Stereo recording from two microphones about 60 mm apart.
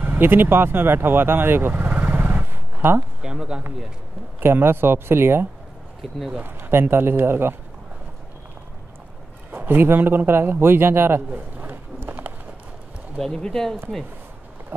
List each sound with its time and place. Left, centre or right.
0.0 s speech: right
3.2 s speech: centre
4.4 s a man's voice: right
9.5 s a man's voice: right
11.2 s a sound: right
13.2 s speech: centre